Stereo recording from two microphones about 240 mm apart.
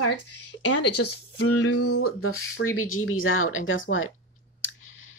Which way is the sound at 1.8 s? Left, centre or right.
Left.